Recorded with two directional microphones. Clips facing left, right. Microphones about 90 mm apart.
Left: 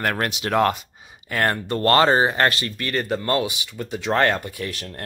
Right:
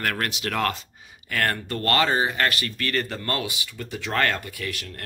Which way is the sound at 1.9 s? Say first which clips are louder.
Left 6 dB; 35° left (ahead or behind).